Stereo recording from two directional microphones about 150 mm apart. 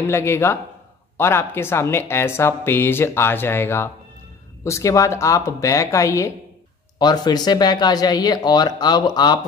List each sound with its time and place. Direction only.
0.1 s speech: 15° left (ahead or behind)